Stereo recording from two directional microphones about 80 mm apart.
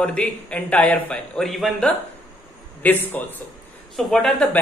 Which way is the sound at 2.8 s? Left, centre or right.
Left.